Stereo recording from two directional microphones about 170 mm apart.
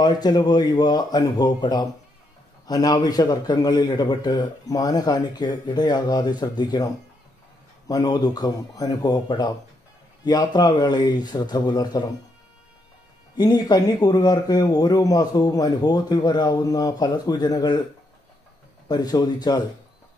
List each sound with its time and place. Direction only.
0.0 s speech: 25° left (ahead or behind)
7.9 s speech: 25° left (ahead or behind)
13.4 s speech: 25° left (ahead or behind)
18.9 s speech: 25° left (ahead or behind)